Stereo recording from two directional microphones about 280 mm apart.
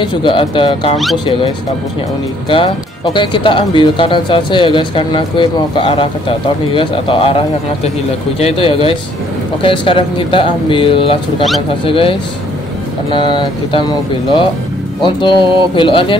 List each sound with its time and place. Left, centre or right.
0.0 s speech: centre
2.5 s speech: centre
15.0 s speech: centre